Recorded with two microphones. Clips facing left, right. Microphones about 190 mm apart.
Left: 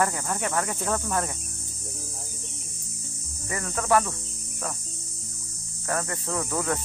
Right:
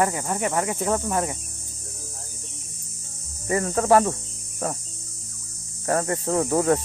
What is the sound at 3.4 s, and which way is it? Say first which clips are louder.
Speech: right 8 dB; 30° right (ahead or behind).